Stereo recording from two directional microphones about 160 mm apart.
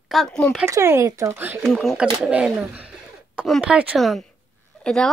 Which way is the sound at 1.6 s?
Centre (ahead or behind).